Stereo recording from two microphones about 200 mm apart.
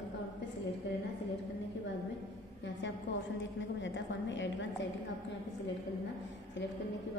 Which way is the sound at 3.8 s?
65° left (ahead or behind).